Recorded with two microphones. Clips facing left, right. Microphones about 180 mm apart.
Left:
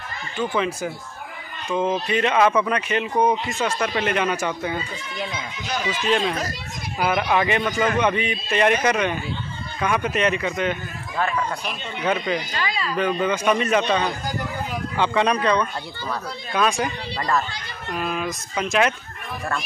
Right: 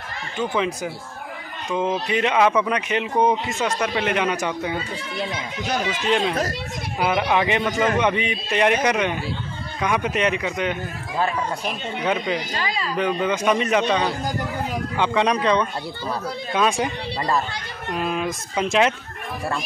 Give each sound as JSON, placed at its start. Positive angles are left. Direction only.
{"t": 0.4, "sound": "a man's voice", "side_deg": -20}
{"t": 7.0, "sound": "a man's voice", "side_deg": -20}
{"t": 12.5, "sound": "speech", "side_deg": -35}
{"t": 12.9, "sound": "a man's voice", "side_deg": -15}